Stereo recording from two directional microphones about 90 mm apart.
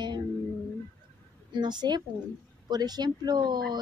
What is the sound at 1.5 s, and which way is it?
Speech, 55° right (ahead or behind).